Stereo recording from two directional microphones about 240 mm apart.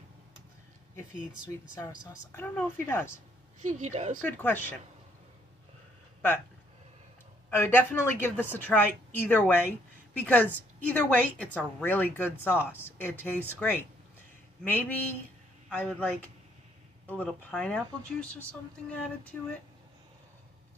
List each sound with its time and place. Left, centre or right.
1.8 s a woman's voice: centre
3.6 s a woman's voice: right
4.2 s a woman's voice: centre
7.4 s a woman's voice: centre